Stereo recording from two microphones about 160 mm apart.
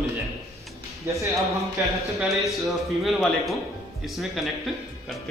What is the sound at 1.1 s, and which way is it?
Speech, 15° right (ahead or behind).